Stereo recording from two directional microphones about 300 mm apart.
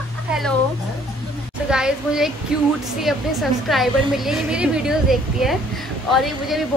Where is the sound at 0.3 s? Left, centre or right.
Centre.